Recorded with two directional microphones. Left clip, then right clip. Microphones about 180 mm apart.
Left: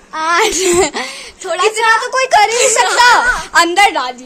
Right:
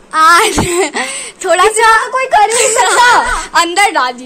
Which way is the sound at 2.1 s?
25° left (ahead or behind).